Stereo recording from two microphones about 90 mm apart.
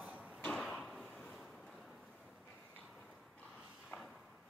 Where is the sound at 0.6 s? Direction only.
5° left (ahead or behind).